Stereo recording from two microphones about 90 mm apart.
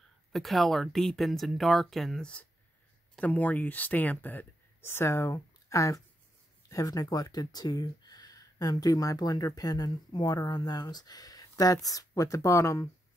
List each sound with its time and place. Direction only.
0.3 s speech: centre (ahead or behind); by 12.9 s 35° left (ahead or behind)